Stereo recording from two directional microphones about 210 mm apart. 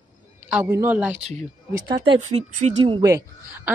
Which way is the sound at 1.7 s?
20° right (ahead or behind).